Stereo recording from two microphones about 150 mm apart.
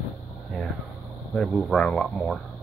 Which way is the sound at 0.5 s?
Centre (ahead or behind).